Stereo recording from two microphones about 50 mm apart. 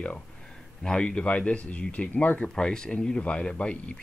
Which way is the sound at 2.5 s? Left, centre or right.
Centre.